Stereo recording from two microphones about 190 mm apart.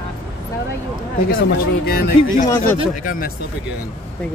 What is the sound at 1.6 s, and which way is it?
Speech, 55° left (ahead or behind).